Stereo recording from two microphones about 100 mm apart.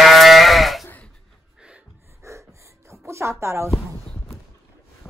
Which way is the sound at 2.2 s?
30° right (ahead or behind).